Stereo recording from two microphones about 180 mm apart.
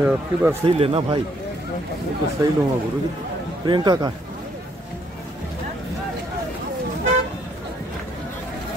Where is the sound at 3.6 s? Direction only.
25° right (ahead or behind).